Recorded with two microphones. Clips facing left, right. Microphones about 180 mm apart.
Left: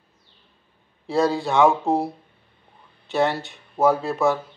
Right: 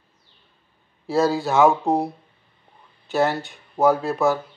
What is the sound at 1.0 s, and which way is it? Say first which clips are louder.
Speech: right 1 dB; centre (ahead or behind).